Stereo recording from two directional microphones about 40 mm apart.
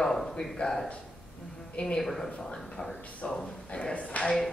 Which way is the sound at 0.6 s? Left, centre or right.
Left.